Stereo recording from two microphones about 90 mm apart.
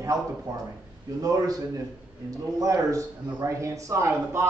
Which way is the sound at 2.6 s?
40° right (ahead or behind).